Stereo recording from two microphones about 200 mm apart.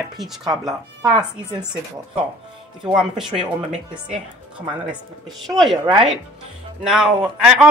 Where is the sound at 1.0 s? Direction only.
20° right (ahead or behind).